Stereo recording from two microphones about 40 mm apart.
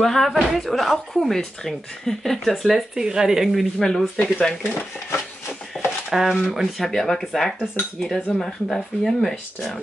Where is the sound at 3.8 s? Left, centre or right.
Centre.